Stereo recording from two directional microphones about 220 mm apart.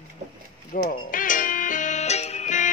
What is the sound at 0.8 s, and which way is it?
Music, 35° left (ahead or behind).